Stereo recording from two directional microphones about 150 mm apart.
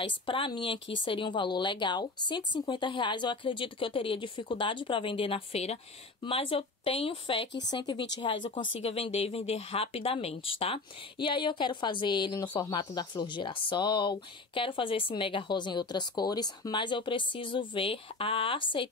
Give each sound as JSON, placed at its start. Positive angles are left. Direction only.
{"t": 0.0, "sound": "speech", "side_deg": 35}